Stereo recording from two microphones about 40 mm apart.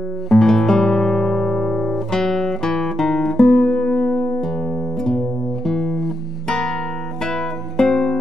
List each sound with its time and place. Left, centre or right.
0.3 s music: centre
5.7 s music: centre
7.7 s music: centre